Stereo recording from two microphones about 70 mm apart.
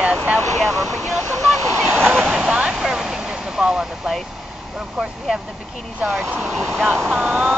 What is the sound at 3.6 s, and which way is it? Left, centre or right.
Speech, centre.